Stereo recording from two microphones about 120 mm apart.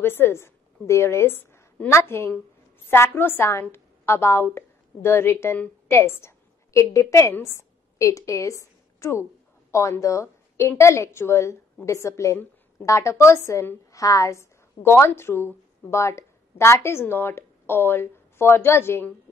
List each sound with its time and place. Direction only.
0.0 s a woman's voice: 20° left (ahead or behind)